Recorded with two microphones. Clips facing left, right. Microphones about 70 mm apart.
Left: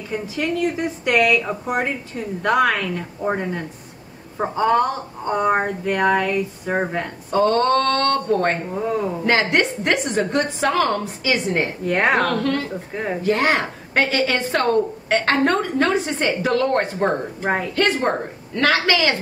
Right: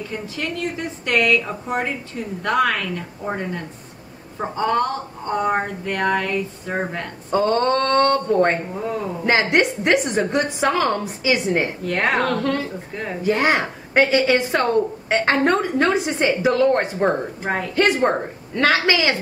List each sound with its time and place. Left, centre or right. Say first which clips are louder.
0.4 s speech: left 5 dB; centre
7.2 s a woman's voice: left 1 dB; centre
11.8 s speech: left 2 dB; centre
12.2 s a woman's voice: left 1 dB; centre
12.9 s speech: left 4 dB; centre
13.2 s a woman's voice: right 1 dB; centre
17.1 s speech: left 1 dB; centre
17.7 s a woman's voice: right 5 dB; centre